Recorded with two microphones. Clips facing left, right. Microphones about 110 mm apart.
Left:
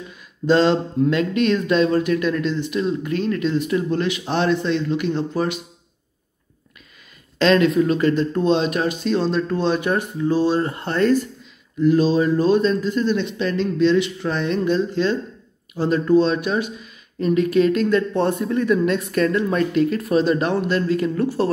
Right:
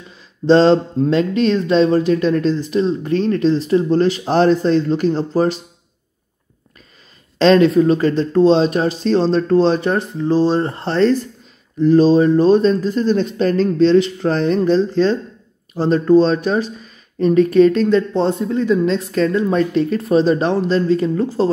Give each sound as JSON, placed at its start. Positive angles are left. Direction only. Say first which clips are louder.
{"t": 0.5, "sound": "speech", "louder": "right 5 dB", "side_deg": -35}
{"t": 7.3, "sound": "speech", "louder": "right 5 dB", "side_deg": -35}